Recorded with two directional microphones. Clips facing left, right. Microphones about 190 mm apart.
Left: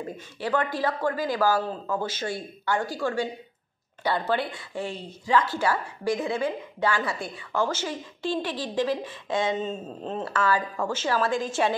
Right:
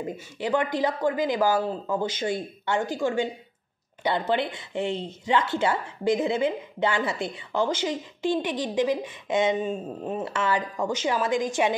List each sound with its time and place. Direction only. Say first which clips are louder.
0.0 s a woman's voice: right 2 dB; 15° right (ahead or behind)